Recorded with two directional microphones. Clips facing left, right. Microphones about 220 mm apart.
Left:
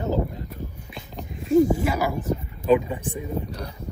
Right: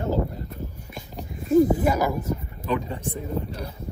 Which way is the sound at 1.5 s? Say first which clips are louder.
Even; 45° right (ahead or behind).